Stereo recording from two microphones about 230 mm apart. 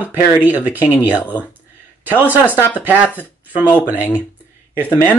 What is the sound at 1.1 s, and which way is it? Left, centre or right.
Speech, centre.